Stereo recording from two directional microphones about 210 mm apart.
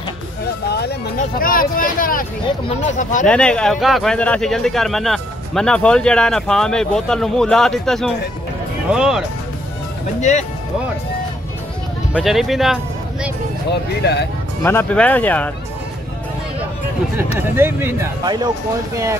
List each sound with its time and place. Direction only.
0.7 s music: 50° left (ahead or behind)
1.4 s speech: 40° left (ahead or behind)
3.3 s speech: 5° left (ahead or behind)
10.3 s speech: 35° left (ahead or behind)
12.1 s speech: centre (ahead or behind)
13.7 s speech: 50° left (ahead or behind)
14.6 s speech: 10° left (ahead or behind)
17.4 s speech: 10° right (ahead or behind)